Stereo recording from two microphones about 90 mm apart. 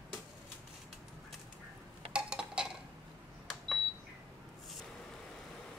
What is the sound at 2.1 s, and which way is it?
Cutlery, 10° right (ahead or behind).